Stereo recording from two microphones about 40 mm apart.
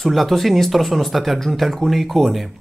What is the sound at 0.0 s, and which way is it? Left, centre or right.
Speech, centre.